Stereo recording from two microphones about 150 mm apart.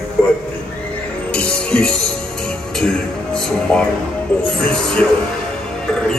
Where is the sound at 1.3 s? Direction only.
10° left (ahead or behind).